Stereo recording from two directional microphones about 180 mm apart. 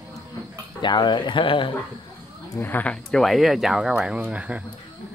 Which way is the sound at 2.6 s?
10° left (ahead or behind).